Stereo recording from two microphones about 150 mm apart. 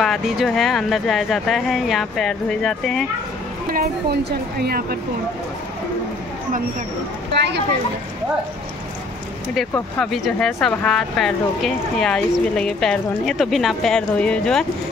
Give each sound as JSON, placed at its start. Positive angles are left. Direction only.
{"t": 0.0, "sound": "speech", "side_deg": 0}
{"t": 3.7, "sound": "a woman's voice", "side_deg": -90}
{"t": 9.6, "sound": "speech", "side_deg": 0}